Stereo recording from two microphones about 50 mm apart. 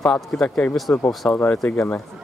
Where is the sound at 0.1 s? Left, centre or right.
Centre.